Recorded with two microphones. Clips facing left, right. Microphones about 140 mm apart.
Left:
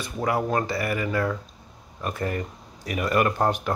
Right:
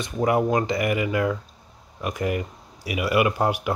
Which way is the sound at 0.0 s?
20° right (ahead or behind).